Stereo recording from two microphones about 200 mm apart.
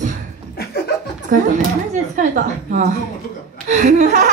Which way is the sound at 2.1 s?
40° right (ahead or behind).